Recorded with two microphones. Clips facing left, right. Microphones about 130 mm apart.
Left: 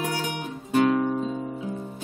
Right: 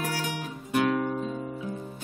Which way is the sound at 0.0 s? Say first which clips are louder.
Left 3 dB; 25° left (ahead or behind).